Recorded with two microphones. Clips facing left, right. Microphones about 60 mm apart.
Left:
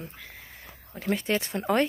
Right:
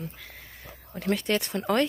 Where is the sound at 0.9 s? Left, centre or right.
Centre.